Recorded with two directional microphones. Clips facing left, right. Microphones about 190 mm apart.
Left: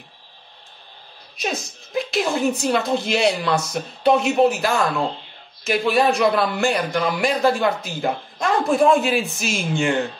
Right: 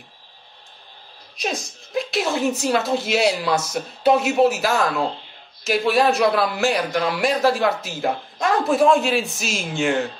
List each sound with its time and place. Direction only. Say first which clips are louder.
1.4 s a man's voice: even; centre (ahead or behind)